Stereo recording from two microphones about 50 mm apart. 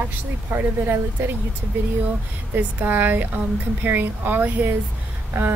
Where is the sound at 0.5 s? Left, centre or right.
Right.